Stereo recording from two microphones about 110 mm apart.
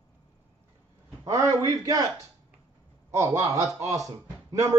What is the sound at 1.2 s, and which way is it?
Speech, 30° right (ahead or behind).